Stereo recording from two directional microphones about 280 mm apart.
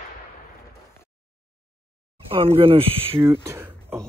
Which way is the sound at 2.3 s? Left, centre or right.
Centre.